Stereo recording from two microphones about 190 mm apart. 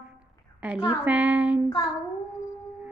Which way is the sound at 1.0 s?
10° right (ahead or behind).